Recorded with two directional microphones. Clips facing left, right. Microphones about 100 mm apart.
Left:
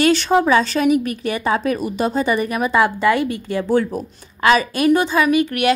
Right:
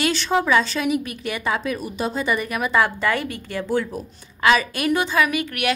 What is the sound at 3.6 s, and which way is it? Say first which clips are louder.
Speech: left 5 dB; 50° left (ahead or behind).